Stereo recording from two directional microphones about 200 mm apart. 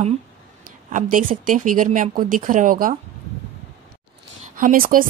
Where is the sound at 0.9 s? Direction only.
40° right (ahead or behind).